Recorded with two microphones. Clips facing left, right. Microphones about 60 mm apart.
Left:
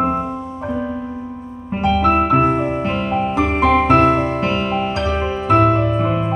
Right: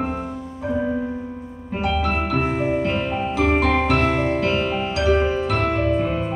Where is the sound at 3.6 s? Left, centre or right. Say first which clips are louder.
Left 6 dB; left.